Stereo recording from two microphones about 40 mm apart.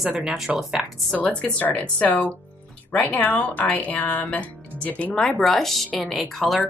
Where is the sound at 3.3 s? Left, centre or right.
Left.